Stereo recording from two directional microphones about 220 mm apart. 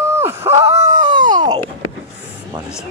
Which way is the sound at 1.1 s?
20° right (ahead or behind).